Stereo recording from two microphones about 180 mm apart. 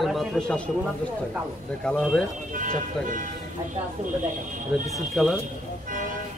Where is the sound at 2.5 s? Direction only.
45° right (ahead or behind).